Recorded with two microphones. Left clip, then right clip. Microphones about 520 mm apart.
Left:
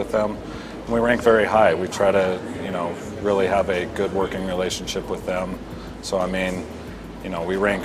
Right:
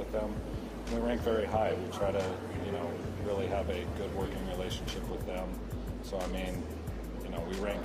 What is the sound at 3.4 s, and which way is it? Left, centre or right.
Speech, left.